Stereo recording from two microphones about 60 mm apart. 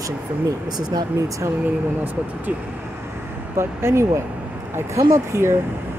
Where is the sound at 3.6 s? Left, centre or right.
Right.